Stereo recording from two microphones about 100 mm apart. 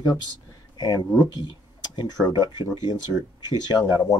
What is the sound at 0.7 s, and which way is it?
Speech, 40° left (ahead or behind).